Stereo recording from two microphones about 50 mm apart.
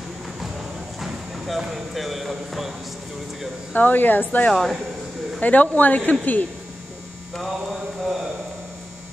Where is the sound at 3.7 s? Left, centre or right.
Left.